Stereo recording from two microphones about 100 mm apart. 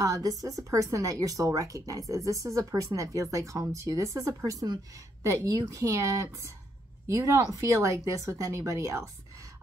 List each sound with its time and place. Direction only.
0.0 s speech: 35° right (ahead or behind)